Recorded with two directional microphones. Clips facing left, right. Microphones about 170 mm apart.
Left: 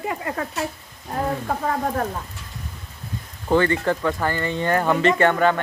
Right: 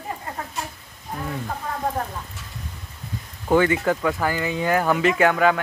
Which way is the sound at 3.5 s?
10° right (ahead or behind).